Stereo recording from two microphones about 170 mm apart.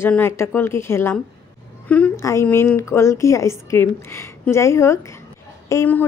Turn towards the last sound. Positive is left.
turn(degrees=15)  # may be behind; listen again after turning